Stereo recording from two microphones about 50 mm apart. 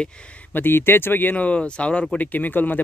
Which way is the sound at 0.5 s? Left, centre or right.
Left.